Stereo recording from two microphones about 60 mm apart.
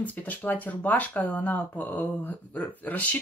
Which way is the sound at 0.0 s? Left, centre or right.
Left.